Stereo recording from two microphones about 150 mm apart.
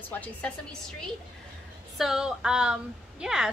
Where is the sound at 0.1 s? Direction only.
10° left (ahead or behind).